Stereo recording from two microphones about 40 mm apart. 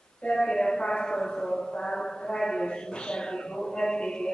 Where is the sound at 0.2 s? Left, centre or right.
Left.